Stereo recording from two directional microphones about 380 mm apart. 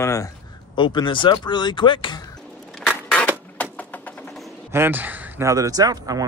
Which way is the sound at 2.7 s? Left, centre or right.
Centre.